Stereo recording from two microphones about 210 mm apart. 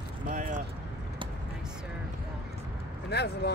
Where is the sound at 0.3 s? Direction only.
35° right (ahead or behind).